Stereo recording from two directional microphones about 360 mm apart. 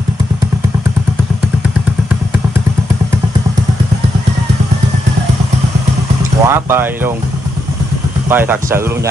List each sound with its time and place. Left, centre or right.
6.4 s speech: centre
8.3 s speech: centre